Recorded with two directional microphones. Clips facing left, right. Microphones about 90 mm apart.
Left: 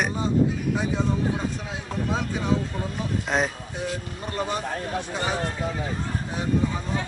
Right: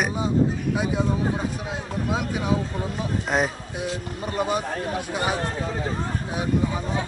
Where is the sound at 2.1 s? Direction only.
10° right (ahead or behind).